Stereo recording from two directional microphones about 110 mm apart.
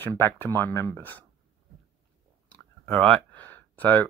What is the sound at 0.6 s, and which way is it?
Speech, 20° left (ahead or behind).